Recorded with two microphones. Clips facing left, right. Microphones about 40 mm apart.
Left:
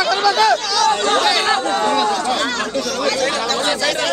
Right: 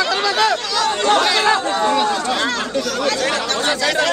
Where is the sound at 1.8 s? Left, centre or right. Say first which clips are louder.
Even; centre.